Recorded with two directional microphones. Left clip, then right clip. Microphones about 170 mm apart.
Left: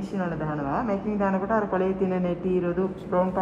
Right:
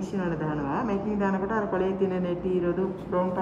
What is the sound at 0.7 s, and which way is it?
A woman's voice, 20° left (ahead or behind).